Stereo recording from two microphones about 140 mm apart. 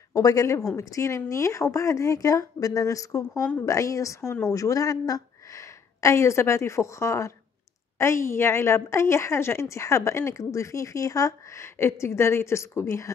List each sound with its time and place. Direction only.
0.1 s a woman's voice: 25° left (ahead or behind)